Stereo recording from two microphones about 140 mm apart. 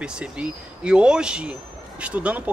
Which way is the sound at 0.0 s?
5° right (ahead or behind).